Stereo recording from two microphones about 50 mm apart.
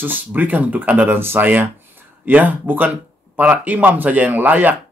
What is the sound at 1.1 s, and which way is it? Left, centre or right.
Speech, right.